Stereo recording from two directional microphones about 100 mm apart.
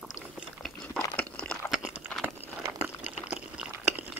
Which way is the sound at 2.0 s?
20° right (ahead or behind).